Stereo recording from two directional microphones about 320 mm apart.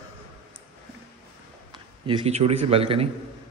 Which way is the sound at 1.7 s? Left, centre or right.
Centre.